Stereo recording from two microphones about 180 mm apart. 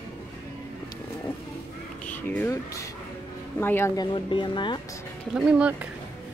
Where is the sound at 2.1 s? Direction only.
10° left (ahead or behind).